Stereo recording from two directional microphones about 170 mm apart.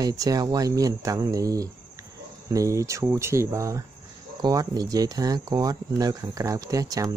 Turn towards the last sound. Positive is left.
turn(degrees=-20)  # may be behind; listen again after turning